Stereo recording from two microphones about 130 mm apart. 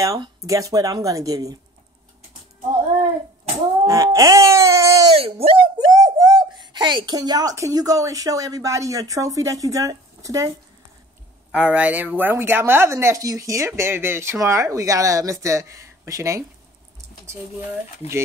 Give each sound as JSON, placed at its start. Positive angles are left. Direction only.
{"t": 0.0, "sound": "speech", "side_deg": -25}
{"t": 3.8, "sound": "baby cry", "side_deg": -25}
{"t": 5.1, "sound": "speech", "side_deg": -50}
{"t": 5.9, "sound": "a child's voice", "side_deg": -30}
{"t": 11.5, "sound": "speech", "side_deg": -10}